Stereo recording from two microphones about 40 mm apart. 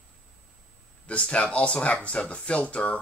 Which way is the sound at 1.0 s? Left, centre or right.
Left.